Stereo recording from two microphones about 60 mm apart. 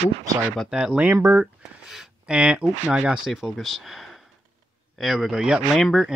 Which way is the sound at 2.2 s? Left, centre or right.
Centre.